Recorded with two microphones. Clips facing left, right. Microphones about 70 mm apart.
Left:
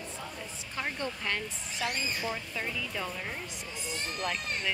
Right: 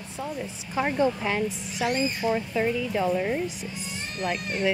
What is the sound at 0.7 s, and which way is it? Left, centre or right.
Speech, centre.